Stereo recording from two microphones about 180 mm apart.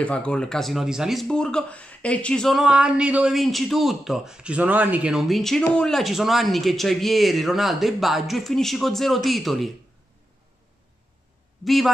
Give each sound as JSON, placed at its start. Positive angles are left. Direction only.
{"t": 0.0, "sound": "speech", "side_deg": 5}
{"t": 11.6, "sound": "a man's voice", "side_deg": 0}